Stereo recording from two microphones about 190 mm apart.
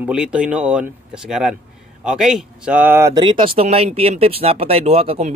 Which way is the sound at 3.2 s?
25° right (ahead or behind).